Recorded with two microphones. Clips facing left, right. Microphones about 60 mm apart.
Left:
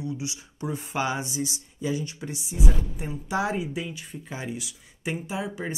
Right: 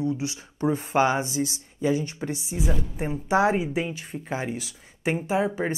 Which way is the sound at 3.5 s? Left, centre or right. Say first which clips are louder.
Right 4 dB; right.